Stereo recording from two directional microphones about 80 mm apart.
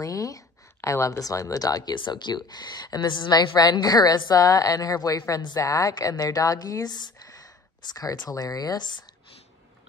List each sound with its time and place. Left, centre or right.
0.0 s a sound: left
1.2 s a woman's voice: left
2.0 s a woman's voice: left